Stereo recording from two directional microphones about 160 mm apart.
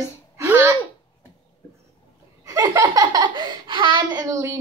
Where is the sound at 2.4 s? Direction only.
20° right (ahead or behind).